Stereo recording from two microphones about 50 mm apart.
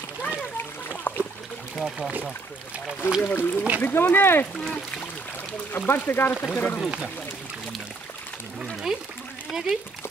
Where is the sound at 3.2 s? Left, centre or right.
Left.